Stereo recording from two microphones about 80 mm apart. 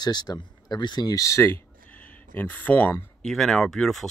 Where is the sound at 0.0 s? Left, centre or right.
Left.